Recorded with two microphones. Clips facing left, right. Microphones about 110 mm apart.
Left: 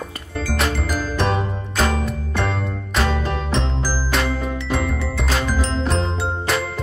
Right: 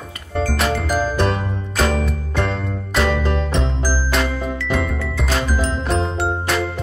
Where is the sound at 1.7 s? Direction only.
Centre (ahead or behind).